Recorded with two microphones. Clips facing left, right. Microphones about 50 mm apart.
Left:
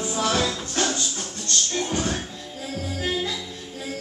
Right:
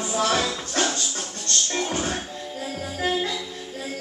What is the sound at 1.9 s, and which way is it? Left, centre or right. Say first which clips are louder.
Music: left 1 dB; right.